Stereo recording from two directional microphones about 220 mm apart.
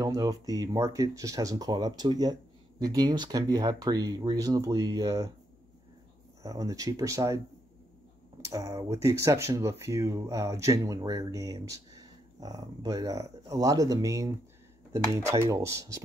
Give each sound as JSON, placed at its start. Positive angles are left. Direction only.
{"t": 0.0, "sound": "speech", "side_deg": -15}
{"t": 6.4, "sound": "speech", "side_deg": -15}
{"t": 8.5, "sound": "speech", "side_deg": -15}